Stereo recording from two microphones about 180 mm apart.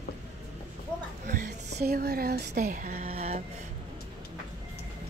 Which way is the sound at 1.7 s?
60° right (ahead or behind).